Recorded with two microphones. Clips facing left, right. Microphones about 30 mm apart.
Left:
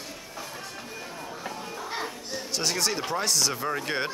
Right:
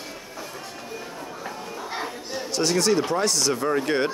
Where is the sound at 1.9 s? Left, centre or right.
Centre.